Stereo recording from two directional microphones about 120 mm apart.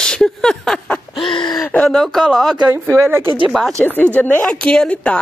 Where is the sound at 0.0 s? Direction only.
5° left (ahead or behind).